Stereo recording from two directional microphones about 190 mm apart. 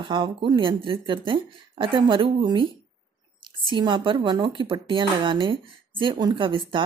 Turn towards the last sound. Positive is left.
turn(degrees=-25)  # may be behind; listen again after turning